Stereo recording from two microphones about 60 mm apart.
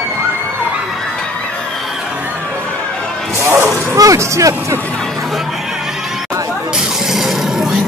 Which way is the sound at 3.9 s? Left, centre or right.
Right.